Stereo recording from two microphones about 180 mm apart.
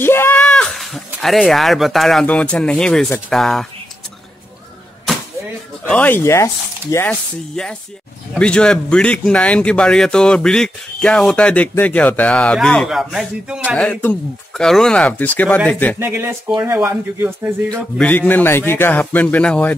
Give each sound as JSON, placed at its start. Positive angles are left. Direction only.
{"t": 0.0, "sound": "speech", "side_deg": 10}
{"t": 5.9, "sound": "speech", "side_deg": 10}
{"t": 16.0, "sound": "speech", "side_deg": -10}
{"t": 17.7, "sound": "speech", "side_deg": 5}